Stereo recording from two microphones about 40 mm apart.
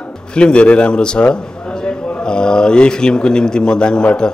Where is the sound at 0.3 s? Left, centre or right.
Left.